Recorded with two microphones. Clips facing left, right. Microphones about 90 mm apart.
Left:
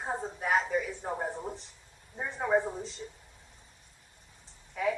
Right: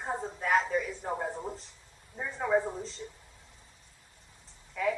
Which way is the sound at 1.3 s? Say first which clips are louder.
Even; centre (ahead or behind).